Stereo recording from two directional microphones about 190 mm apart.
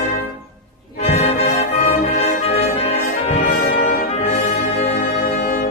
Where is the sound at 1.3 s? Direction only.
35° left (ahead or behind).